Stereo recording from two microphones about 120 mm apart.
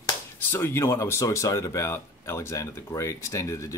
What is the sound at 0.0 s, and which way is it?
Speech, 20° left (ahead or behind).